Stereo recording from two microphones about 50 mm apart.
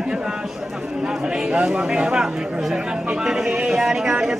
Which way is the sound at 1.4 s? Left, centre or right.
Right.